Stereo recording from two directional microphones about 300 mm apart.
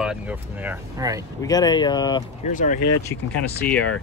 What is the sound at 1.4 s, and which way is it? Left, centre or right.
Speech, centre.